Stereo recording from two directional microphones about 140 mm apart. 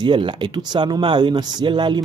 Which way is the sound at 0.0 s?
35° right (ahead or behind).